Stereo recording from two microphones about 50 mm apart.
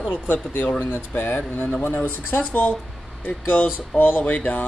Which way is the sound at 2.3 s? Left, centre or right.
Left.